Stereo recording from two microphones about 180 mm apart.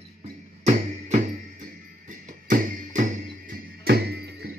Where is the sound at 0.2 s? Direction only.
40° right (ahead or behind).